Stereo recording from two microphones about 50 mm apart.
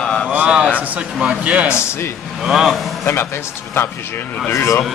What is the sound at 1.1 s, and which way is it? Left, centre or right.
Speech, right.